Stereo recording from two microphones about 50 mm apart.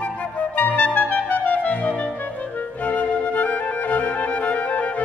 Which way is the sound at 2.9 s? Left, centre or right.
Left.